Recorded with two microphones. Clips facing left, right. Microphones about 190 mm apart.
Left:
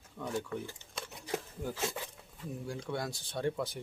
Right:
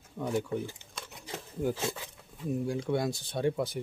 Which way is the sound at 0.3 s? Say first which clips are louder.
Right 5 dB; 20° right (ahead or behind).